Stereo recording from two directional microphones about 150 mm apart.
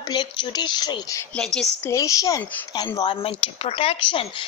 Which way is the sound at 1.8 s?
20° left (ahead or behind).